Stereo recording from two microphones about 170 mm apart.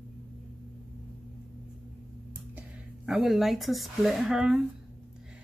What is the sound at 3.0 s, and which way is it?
Speech, centre (ahead or behind).